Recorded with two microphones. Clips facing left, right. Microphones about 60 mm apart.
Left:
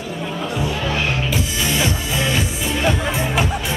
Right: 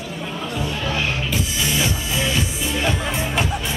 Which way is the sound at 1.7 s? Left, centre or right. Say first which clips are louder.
Left 3 dB; left.